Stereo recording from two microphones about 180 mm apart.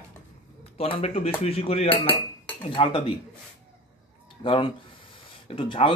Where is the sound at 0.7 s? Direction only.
30° left (ahead or behind).